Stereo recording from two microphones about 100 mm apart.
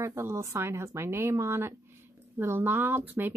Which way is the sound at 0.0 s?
30° right (ahead or behind).